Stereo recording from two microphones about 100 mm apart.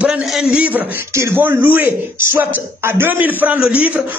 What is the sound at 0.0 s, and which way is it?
A man's voice, 5° right (ahead or behind).